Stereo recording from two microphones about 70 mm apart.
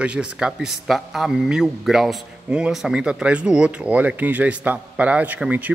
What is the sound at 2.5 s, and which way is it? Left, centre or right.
Speech, centre.